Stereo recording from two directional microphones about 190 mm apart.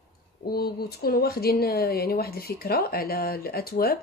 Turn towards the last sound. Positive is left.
turn(degrees=55)  # may be behind; listen again after turning